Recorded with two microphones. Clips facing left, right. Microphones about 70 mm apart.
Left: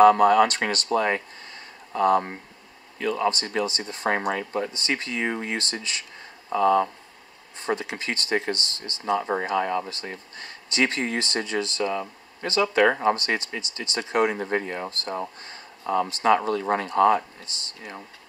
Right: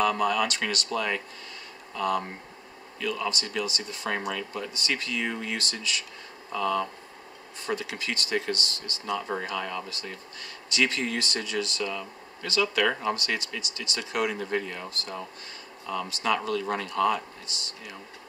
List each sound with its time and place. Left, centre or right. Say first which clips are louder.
0.0 s speech: left 9 dB; left